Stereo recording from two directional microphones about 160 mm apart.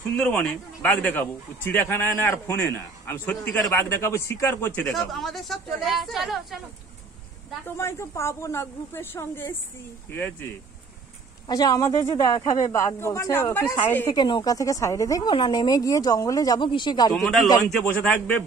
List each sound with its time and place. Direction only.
0.1 s a man's voice: 5° left (ahead or behind)
7.6 s a man's voice: 15° left (ahead or behind)
11.4 s speech: 25° left (ahead or behind)
17.2 s a man's voice: centre (ahead or behind)
18.1 s a man's voice: 10° left (ahead or behind)